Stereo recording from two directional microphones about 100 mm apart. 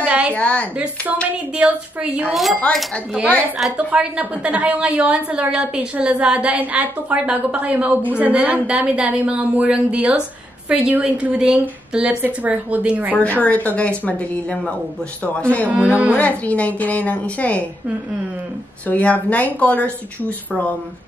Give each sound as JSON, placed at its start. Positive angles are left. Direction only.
{"t": 0.3, "sound": "a woman's voice", "side_deg": 15}
{"t": 1.3, "sound": "a woman's voice", "side_deg": -15}
{"t": 2.7, "sound": "a woman's voice", "side_deg": 15}
{"t": 3.5, "sound": "a woman's voice", "side_deg": 0}
{"t": 3.9, "sound": "a woman's voice", "side_deg": -10}
{"t": 13.4, "sound": "a woman's voice", "side_deg": 15}
{"t": 15.8, "sound": "a woman's voice", "side_deg": -15}
{"t": 16.2, "sound": "a woman's voice", "side_deg": 15}
{"t": 18.9, "sound": "a woman's voice", "side_deg": 15}